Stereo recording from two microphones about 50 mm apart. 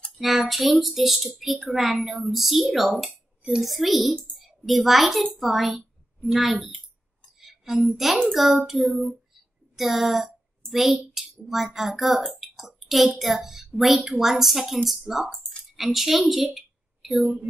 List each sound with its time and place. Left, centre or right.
0.2 s a woman's voice: centre
15.4 s a sound: centre
17.2 s a woman's voice: right